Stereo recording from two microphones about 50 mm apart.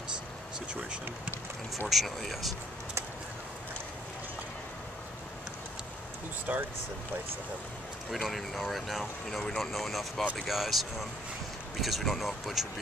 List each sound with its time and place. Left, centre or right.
1.9 s speech: centre
6.5 s speech: right
8.5 s speech: centre